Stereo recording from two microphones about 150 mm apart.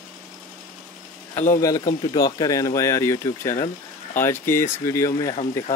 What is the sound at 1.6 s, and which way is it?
Speech, 25° left (ahead or behind).